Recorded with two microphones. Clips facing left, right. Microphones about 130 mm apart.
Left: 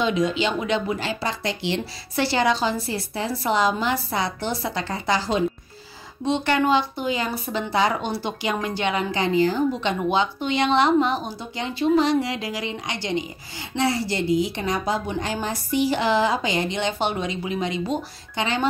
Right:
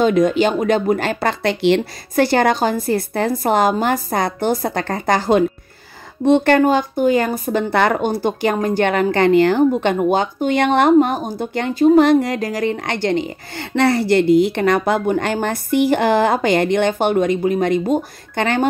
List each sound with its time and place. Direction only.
0.0 s speech: 50° right (ahead or behind)
2.1 s speech: 50° right (ahead or behind); by 9.7 s 65° right (ahead or behind)
9.7 s speech: 50° right (ahead or behind)